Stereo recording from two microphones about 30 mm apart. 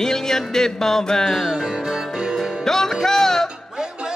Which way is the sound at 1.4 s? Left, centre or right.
Centre.